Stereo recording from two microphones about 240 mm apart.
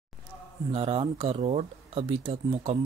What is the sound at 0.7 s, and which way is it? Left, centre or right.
Speech, right.